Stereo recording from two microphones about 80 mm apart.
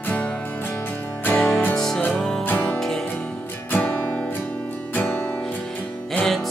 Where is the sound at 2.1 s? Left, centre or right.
Centre.